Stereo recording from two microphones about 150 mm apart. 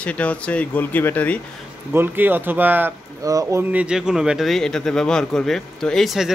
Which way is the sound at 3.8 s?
5° right (ahead or behind).